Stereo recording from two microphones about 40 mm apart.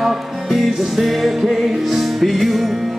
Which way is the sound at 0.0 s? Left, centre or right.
Centre.